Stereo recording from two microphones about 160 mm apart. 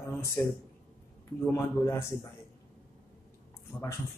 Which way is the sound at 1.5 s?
15° left (ahead or behind).